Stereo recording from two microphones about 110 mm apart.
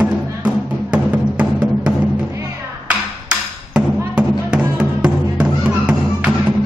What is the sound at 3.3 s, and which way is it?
Music, 10° right (ahead or behind).